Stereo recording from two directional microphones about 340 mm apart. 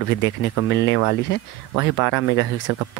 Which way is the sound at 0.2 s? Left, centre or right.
Left.